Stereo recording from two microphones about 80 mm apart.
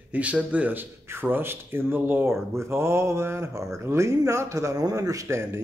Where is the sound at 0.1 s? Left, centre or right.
Centre.